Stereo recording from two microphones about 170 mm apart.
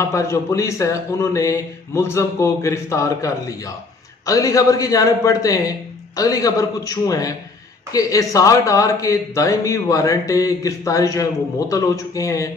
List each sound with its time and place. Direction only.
0.0 s speech: 15° left (ahead or behind)